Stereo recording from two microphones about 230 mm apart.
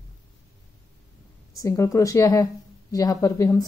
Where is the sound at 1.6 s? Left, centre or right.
Centre.